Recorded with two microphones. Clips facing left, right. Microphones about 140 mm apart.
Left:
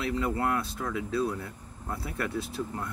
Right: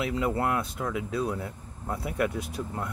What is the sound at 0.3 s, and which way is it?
Speech, 20° right (ahead or behind).